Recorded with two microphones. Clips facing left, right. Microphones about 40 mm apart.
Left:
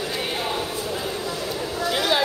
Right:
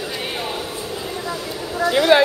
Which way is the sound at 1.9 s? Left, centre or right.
Centre.